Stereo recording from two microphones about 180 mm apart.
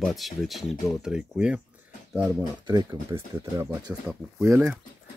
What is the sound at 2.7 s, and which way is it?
Speech, 20° right (ahead or behind).